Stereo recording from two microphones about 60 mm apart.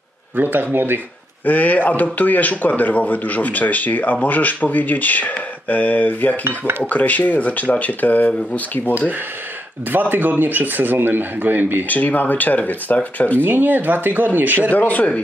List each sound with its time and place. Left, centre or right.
0.4 s a man's voice: right
1.4 s a man's voice: left
9.8 s a man's voice: right
11.9 s a man's voice: left
13.4 s a man's voice: right
14.7 s a man's voice: left